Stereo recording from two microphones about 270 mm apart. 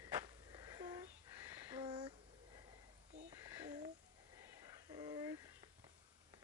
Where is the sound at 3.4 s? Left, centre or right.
Centre.